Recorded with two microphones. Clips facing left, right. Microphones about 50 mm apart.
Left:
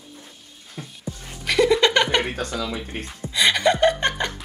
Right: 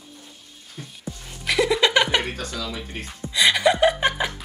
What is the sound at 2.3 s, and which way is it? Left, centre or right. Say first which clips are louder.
Speech: left 4 dB; left.